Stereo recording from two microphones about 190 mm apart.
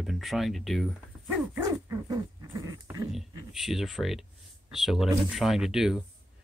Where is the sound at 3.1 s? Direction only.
Centre (ahead or behind).